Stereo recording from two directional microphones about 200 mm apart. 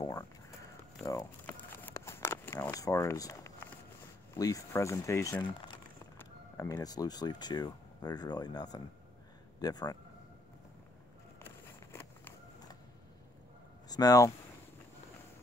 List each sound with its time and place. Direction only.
1.0 s crumpling: 10° left (ahead or behind)
4.4 s speech: 15° left (ahead or behind)
11.9 s a sound: 15° left (ahead or behind)
13.8 s speech: 20° left (ahead or behind)